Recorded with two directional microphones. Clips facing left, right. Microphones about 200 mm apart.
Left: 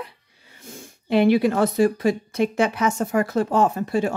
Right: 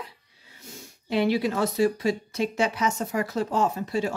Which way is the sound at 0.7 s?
55° left (ahead or behind).